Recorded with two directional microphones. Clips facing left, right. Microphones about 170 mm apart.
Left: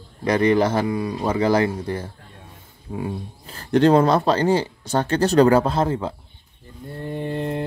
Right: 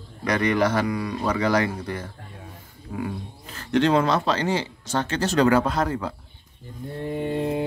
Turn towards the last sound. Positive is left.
turn(degrees=-5)  # may be behind; listen again after turning